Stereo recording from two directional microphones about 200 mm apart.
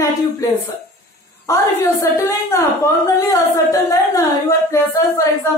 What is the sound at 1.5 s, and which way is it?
A woman's voice, 10° left (ahead or behind).